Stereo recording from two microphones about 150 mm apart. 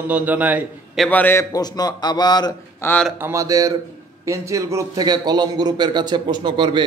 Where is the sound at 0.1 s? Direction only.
10° right (ahead or behind).